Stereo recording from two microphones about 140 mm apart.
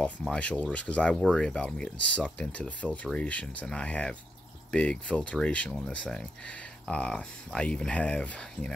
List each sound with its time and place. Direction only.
0.3 s speech: 10° left (ahead or behind)